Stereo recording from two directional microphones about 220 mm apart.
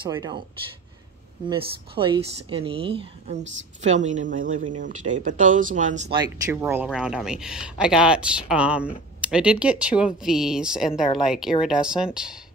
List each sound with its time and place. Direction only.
0.0 s speech: 20° right (ahead or behind)
1.5 s speech: 25° right (ahead or behind)
6.1 s speech: 10° right (ahead or behind)